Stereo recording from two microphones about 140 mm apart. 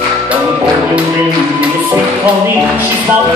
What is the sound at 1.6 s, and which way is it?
Music, 10° right (ahead or behind).